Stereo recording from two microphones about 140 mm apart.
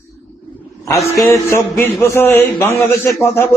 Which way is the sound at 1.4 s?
15° left (ahead or behind).